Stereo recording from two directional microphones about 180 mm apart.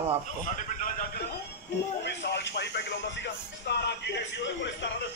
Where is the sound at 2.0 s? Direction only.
70° left (ahead or behind).